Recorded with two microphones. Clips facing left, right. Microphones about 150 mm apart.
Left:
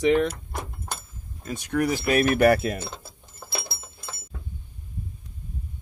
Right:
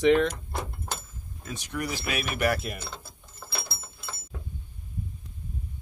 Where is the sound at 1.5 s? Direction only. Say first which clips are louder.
Left 8 dB; 55° left (ahead or behind).